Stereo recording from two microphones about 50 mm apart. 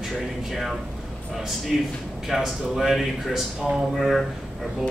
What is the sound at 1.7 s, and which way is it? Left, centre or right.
A man's voice, centre.